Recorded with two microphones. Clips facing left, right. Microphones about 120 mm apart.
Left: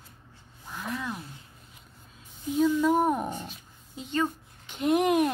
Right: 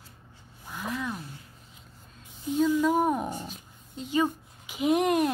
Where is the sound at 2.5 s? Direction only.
Centre (ahead or behind).